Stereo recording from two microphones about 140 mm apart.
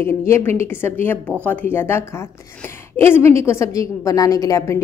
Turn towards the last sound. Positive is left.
turn(degrees=25)  # may be behind; listen again after turning